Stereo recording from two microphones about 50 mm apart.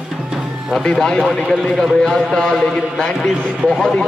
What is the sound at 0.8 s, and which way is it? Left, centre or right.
A man's voice, centre.